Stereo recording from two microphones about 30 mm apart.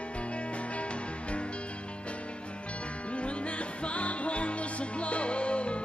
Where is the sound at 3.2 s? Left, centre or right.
Left.